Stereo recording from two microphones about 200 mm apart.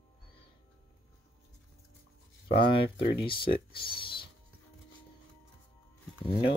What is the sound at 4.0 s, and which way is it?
Music, 25° left (ahead or behind).